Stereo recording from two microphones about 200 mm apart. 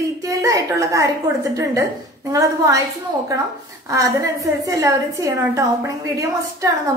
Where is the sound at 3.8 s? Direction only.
15° right (ahead or behind).